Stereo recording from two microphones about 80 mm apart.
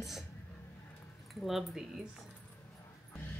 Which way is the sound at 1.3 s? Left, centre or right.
Centre.